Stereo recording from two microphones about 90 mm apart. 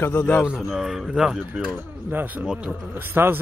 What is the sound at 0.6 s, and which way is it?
Speech, 5° right (ahead or behind).